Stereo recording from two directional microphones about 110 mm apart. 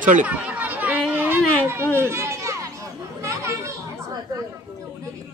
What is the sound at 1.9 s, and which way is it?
Children playing, 25° right (ahead or behind).